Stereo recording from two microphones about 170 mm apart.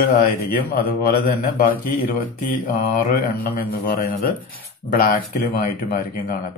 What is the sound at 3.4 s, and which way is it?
Speech, 65° left (ahead or behind).